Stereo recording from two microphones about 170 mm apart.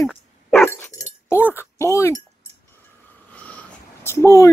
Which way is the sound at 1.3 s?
15° left (ahead or behind).